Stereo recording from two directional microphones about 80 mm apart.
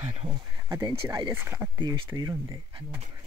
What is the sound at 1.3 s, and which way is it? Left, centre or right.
Speech, right.